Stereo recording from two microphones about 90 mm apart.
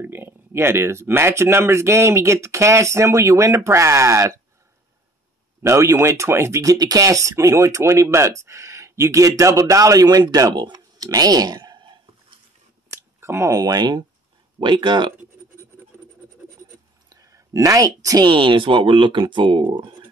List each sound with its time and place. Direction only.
0.0 s speech: 25° right (ahead or behind)
5.6 s speech: 30° right (ahead or behind); by 11.8 s 50° right (ahead or behind)
13.2 s speech: 30° right (ahead or behind); by 15.1 s 55° right (ahead or behind)
17.1 s a sound: 40° right (ahead or behind)
18.2 s speech: 65° right (ahead or behind)